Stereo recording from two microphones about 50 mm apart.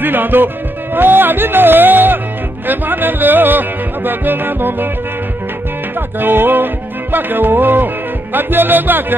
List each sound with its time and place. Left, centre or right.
0.0 s speech: right
2.6 s music: right
6.1 s music: right